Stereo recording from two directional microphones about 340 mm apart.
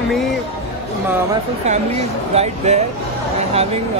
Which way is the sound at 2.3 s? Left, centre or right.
Centre.